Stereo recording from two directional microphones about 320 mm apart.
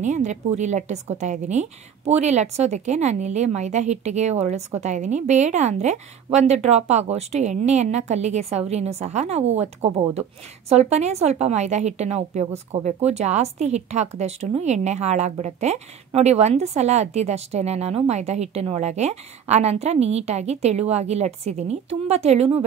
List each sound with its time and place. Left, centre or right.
0.0 s a woman's voice: right